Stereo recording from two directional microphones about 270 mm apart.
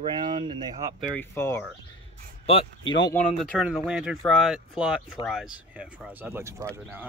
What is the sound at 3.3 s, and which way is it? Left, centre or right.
Speech, centre.